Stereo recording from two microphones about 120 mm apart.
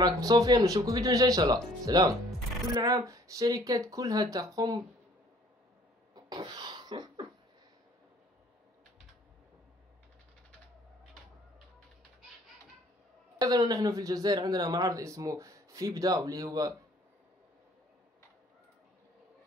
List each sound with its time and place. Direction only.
0.0 s speech: 30° right (ahead or behind)
6.1 s a sound: 35° right (ahead or behind)
13.4 s speech: 35° right (ahead or behind)